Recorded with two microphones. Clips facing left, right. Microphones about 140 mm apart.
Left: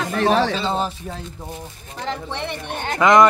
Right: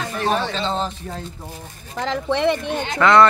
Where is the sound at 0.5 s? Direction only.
10° left (ahead or behind).